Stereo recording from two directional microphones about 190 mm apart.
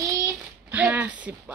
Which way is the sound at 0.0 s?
15° right (ahead or behind).